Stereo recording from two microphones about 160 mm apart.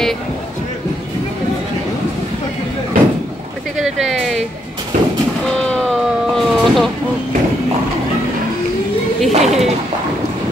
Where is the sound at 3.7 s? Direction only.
Centre (ahead or behind).